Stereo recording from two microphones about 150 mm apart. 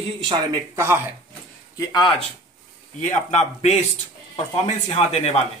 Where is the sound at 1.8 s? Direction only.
25° left (ahead or behind).